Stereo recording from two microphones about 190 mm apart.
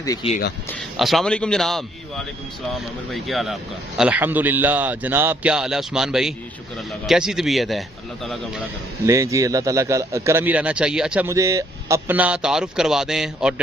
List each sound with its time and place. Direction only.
0.0 s speech: 20° left (ahead or behind)
0.9 s a man's voice: centre (ahead or behind)
3.1 s a man's voice: centre (ahead or behind)
9.0 s a man's voice: 15° right (ahead or behind)
11.2 s a man's voice: 15° right (ahead or behind)